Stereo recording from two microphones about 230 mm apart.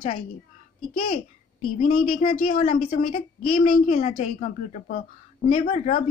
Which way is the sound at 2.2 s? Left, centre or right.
Left.